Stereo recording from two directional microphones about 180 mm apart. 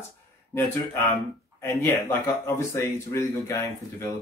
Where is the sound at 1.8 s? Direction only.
10° left (ahead or behind).